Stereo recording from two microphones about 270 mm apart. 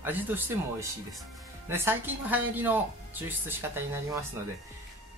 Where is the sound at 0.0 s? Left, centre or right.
Centre.